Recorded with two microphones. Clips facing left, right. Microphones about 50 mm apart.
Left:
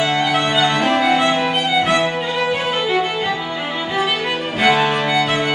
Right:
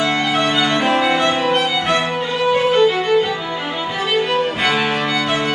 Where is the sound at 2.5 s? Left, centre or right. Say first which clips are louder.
Right 5 dB; centre.